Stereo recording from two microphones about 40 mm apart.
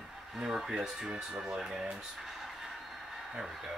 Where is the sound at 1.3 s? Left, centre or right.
Right.